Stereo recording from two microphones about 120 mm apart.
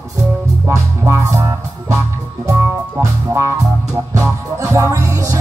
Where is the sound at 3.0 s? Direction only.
25° right (ahead or behind).